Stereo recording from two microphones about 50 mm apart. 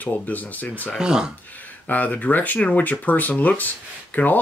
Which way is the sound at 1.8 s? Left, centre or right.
Left.